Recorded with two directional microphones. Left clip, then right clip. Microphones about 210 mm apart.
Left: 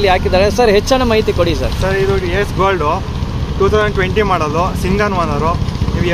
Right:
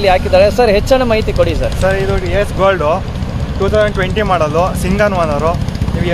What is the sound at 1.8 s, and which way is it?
Speech, 10° right (ahead or behind).